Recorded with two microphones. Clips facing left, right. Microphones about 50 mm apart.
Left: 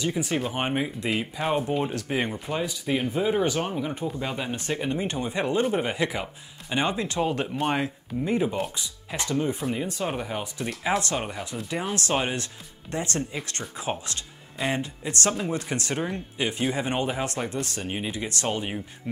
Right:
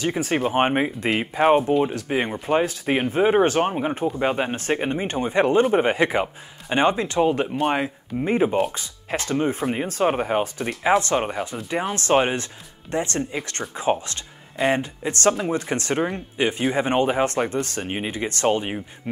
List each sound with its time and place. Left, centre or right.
0.0 s speech: right
1.8 s speech: centre
2.4 s speech: right
7.2 s speech: centre
8.2 s speech: right
17.8 s speech: right